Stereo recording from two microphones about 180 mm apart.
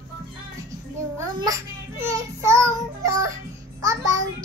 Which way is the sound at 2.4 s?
15° right (ahead or behind).